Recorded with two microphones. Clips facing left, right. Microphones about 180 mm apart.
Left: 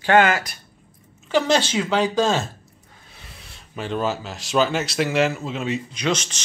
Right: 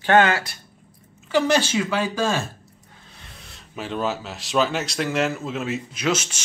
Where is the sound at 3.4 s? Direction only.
Centre (ahead or behind).